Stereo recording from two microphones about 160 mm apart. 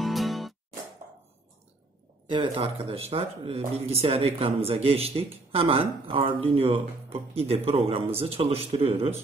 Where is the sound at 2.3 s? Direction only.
35° right (ahead or behind).